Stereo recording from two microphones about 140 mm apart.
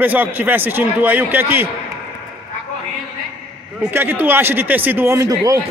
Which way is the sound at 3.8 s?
15° right (ahead or behind).